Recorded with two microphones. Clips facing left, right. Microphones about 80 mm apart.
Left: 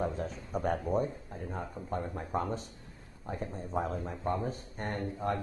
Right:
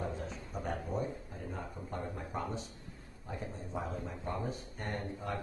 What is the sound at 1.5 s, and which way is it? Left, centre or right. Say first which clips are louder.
Speech: left 5 dB; left.